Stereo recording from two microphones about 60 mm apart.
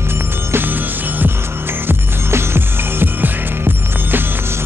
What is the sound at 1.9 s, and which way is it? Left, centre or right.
Music, right.